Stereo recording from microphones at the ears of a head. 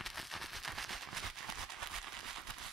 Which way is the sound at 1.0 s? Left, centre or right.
Right.